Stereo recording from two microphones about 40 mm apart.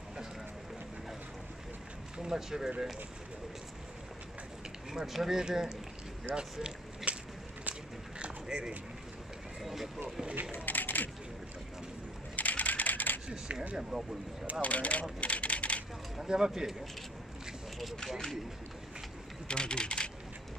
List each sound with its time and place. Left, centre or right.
2.1 s speech: centre
4.9 s speech: centre
6.3 s speech: right
7.1 s a sound: right
8.2 s a sound: right
9.6 s vehicle: centre
10.5 s a sound: left
12.4 s typing: left
13.3 s speech: centre
14.6 s speech: left
15.1 s typing: left
16.2 s speech: centre
18.0 s speech: centre
19.4 s speech: left